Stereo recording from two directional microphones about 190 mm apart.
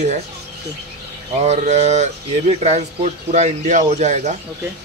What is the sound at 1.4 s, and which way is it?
Speech, 35° right (ahead or behind).